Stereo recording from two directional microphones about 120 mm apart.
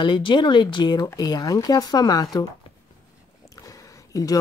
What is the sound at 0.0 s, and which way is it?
Speech, 40° left (ahead or behind).